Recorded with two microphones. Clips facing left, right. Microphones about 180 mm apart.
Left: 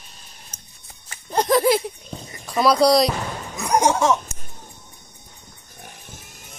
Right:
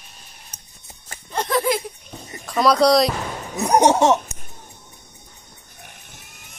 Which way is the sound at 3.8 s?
25° right (ahead or behind).